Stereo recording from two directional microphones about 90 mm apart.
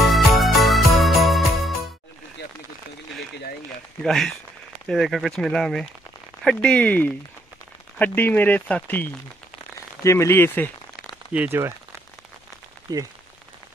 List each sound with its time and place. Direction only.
0.0 s music: centre (ahead or behind)
4.0 s speech: 5° left (ahead or behind); by 9.1 s 20° left (ahead or behind)
10.0 s speech: 30° left (ahead or behind)
11.3 s speech: 25° right (ahead or behind)
12.9 s speech: 45° right (ahead or behind)